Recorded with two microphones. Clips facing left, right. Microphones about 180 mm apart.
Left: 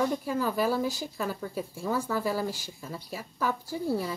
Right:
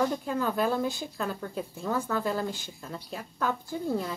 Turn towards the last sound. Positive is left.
turn(degrees=5)  # may be behind; listen again after turning